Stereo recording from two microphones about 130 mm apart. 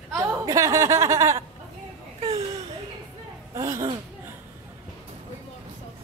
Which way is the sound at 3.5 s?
25° right (ahead or behind).